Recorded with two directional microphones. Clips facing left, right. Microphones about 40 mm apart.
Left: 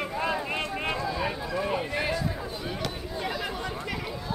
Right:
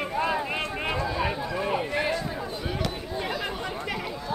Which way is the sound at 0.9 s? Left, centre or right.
Right.